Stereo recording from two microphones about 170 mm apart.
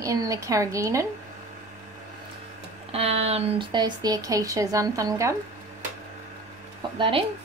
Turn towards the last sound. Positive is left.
turn(degrees=-30)  # may be behind; listen again after turning